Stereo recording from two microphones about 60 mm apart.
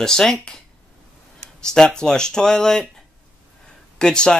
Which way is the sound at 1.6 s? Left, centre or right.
Centre.